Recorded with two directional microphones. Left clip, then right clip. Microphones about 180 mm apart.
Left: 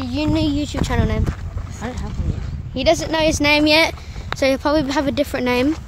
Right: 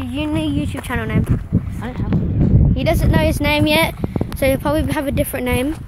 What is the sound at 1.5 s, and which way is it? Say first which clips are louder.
Boat: right 14 dB; 40° right (ahead or behind).